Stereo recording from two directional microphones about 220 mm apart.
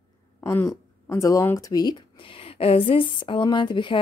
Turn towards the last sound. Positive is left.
turn(degrees=20)  # may be behind; listen again after turning